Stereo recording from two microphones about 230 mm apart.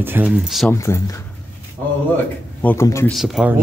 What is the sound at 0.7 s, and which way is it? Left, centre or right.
Speech, centre.